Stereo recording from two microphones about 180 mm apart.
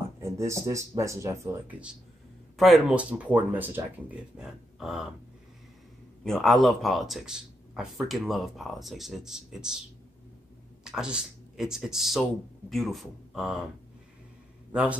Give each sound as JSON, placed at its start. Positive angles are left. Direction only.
{"t": 0.2, "sound": "speech", "side_deg": -15}
{"t": 6.2, "sound": "speech", "side_deg": 0}
{"t": 10.8, "sound": "speech", "side_deg": -5}
{"t": 14.7, "sound": "a man's voice", "side_deg": -5}